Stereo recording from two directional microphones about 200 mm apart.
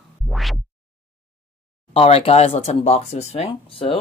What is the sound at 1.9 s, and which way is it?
Speech, 30° left (ahead or behind).